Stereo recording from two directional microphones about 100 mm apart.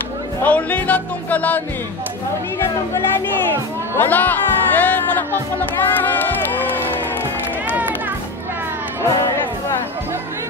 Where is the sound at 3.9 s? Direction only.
20° left (ahead or behind).